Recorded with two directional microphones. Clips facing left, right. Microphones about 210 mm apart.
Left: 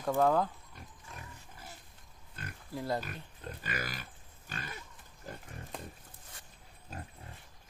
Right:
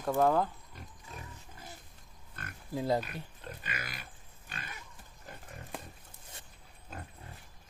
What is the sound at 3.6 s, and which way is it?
Pig, 40° left (ahead or behind).